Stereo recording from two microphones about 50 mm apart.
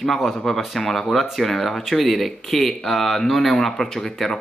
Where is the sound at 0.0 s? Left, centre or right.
Centre.